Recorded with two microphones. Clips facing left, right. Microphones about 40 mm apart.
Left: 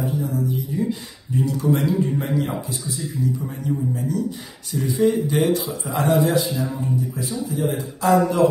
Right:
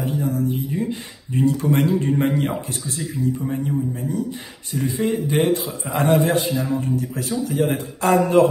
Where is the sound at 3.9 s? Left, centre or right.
Right.